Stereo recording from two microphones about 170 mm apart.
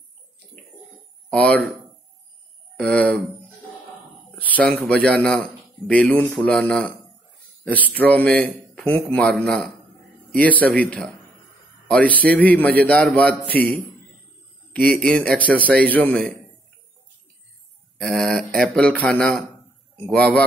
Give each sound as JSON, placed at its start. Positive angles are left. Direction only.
{"t": 1.3, "sound": "a man's voice", "side_deg": 5}
{"t": 2.8, "sound": "a man's voice", "side_deg": 5}
{"t": 4.4, "sound": "a man's voice", "side_deg": 10}
{"t": 17.9, "sound": "a man's voice", "side_deg": 5}